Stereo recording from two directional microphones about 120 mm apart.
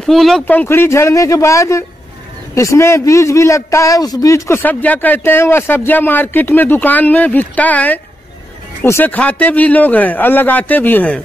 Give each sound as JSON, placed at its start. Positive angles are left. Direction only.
{"t": 0.0, "sound": "speech", "side_deg": 0}
{"t": 0.5, "sound": "a man's voice", "side_deg": 15}